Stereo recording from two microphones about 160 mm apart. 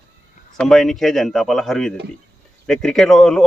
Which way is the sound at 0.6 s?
Centre (ahead or behind).